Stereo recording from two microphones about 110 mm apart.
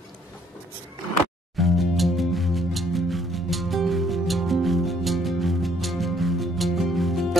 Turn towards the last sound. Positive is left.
turn(degrees=0)  # may be behind; listen again after turning